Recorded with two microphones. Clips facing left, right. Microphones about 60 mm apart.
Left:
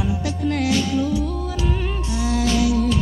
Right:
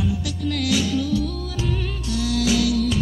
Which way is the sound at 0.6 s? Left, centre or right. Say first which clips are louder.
Left 1 dB; left.